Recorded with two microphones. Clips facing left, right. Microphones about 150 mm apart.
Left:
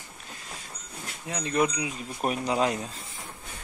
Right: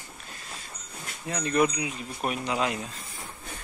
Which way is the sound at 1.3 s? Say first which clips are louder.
Right 2 dB; 15° left (ahead or behind).